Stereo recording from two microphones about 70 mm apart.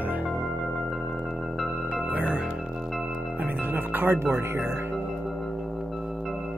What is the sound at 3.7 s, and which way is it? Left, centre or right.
Speech, right.